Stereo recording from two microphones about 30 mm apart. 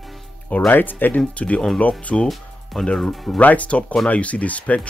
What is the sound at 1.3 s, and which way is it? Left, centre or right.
Speech, left.